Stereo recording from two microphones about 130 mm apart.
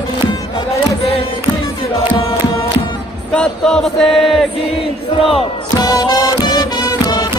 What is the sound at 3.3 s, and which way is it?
Chant, 5° left (ahead or behind).